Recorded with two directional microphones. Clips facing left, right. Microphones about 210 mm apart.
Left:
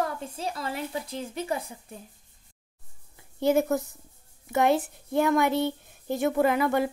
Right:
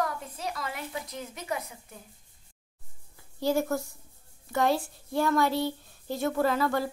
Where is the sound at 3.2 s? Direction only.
20° left (ahead or behind).